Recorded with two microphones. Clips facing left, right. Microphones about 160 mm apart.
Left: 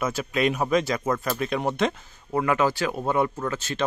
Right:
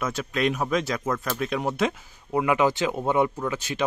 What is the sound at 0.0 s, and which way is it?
Speech, 5° left (ahead or behind).